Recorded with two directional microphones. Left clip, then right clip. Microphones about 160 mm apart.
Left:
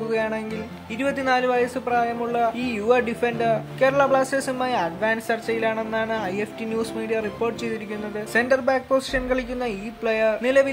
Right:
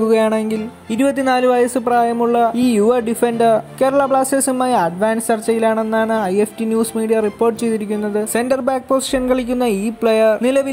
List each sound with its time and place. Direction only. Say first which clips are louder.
0.1 s music: right 8 dB; 45° right (ahead or behind)
0.9 s speech: right 6 dB; 40° right (ahead or behind)